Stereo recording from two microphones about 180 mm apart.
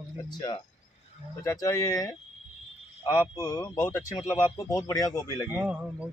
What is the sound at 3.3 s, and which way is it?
Speech, 20° left (ahead or behind).